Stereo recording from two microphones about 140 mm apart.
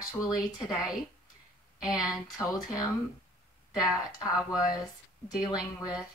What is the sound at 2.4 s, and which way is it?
Speech, 25° left (ahead or behind).